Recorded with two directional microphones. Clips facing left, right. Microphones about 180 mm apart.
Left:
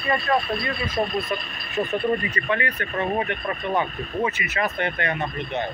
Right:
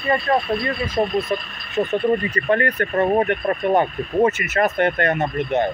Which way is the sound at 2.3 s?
45° right (ahead or behind).